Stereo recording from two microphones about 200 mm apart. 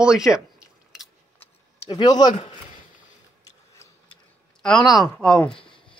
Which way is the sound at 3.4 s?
15° left (ahead or behind).